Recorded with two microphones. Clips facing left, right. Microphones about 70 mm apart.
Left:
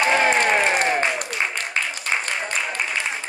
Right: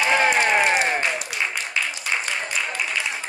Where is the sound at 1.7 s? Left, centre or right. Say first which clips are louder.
Even; left.